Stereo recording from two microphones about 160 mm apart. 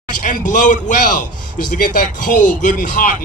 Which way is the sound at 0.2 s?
55° left (ahead or behind).